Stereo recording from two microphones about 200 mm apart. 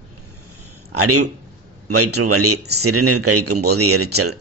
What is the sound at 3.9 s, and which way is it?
Speech, 90° right.